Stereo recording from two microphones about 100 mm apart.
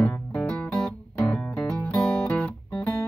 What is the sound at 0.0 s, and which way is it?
Music, 10° left (ahead or behind).